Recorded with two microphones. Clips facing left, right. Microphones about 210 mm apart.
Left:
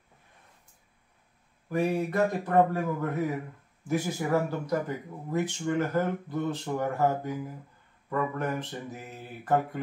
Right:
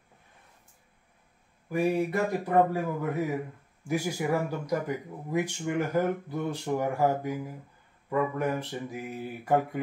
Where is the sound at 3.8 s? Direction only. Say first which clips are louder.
Even; 10° right (ahead or behind).